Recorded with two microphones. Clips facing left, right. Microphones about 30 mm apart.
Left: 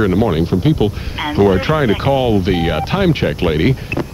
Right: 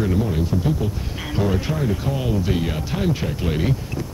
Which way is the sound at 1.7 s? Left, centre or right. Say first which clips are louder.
Left 9 dB; left.